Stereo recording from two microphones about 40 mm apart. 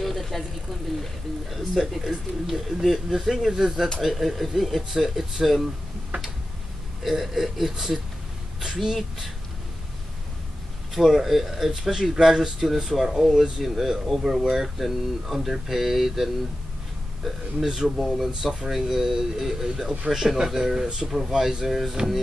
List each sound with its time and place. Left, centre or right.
0.0 s a sound: centre
1.0 s speech: centre
7.0 s speech: centre
11.0 s speech: centre
18.4 s speech: centre